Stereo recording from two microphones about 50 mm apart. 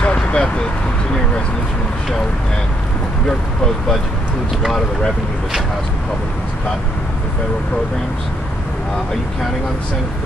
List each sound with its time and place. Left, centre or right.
0.0 s vehicle: left
3.3 s speech: centre